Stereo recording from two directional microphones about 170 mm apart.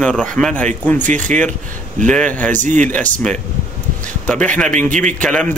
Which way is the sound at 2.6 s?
45° right (ahead or behind).